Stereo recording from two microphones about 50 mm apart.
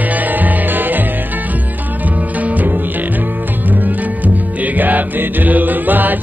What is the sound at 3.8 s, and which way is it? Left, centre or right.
Music, right.